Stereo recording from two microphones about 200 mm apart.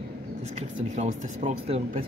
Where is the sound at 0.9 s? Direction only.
35° right (ahead or behind).